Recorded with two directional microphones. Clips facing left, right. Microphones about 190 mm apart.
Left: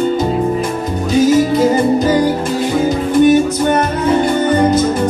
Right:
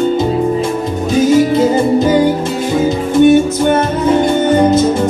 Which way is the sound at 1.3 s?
25° right (ahead or behind).